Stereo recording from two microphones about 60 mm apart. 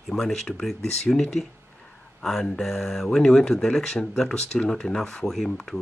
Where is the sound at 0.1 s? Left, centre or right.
Centre.